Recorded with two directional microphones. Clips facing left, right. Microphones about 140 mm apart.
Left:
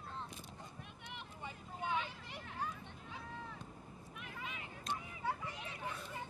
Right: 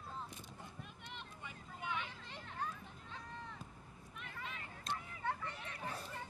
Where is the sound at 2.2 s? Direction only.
5° left (ahead or behind).